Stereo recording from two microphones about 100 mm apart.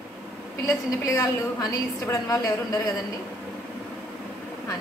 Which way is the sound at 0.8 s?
35° left (ahead or behind).